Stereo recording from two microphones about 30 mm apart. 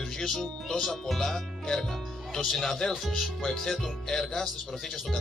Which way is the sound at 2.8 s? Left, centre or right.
Left.